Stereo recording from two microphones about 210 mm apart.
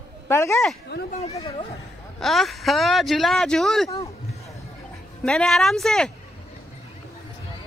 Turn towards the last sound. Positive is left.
turn(degrees=0)  # may be behind; listen again after turning